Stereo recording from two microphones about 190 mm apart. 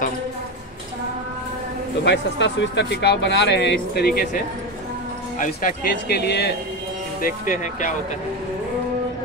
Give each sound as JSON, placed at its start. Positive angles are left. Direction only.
{"t": 2.0, "sound": "speech", "side_deg": 70}
{"t": 5.4, "sound": "speech", "side_deg": 45}
{"t": 7.2, "sound": "speech", "side_deg": 45}